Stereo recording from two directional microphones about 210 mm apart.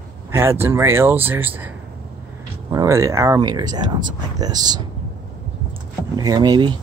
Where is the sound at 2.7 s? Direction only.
15° right (ahead or behind).